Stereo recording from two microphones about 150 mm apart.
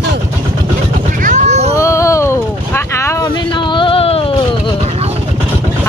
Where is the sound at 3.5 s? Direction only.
30° left (ahead or behind).